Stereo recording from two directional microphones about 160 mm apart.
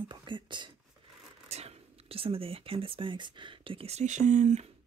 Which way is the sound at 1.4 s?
40° right (ahead or behind).